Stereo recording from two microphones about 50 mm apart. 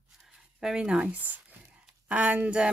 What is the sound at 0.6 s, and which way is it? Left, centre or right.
Speech, centre.